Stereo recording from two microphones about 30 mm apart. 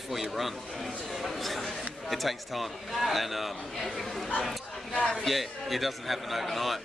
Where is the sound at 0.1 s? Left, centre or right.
Centre.